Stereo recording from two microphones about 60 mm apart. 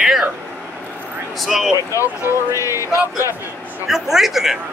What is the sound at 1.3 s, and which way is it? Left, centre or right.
Speech, centre.